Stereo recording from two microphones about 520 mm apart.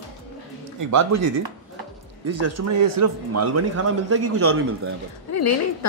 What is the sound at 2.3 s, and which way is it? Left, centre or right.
A man's voice, right.